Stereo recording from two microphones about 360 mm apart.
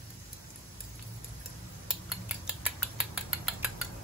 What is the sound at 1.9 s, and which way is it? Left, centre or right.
Mechanisms, centre.